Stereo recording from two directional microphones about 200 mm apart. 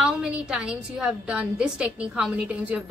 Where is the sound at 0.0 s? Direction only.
5° right (ahead or behind).